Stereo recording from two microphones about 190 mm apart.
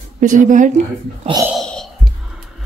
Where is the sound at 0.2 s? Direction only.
40° right (ahead or behind).